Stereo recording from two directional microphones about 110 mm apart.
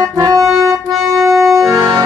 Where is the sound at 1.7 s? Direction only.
40° right (ahead or behind).